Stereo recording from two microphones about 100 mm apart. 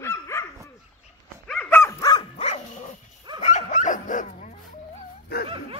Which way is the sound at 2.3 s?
80° left.